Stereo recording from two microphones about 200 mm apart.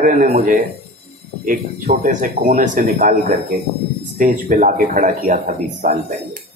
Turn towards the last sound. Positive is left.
turn(degrees=-45)  # may be behind; listen again after turning